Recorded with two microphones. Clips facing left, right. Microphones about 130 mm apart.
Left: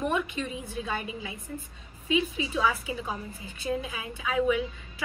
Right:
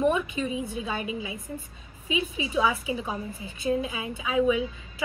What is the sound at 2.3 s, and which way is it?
A woman's voice, 15° right (ahead or behind).